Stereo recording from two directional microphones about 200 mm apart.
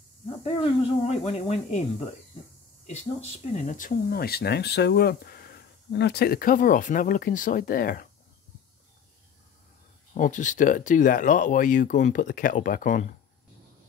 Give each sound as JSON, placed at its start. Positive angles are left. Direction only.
{"t": 0.4, "sound": "speech", "side_deg": 30}
{"t": 3.5, "sound": "speech", "side_deg": 40}
{"t": 10.1, "sound": "speech", "side_deg": 40}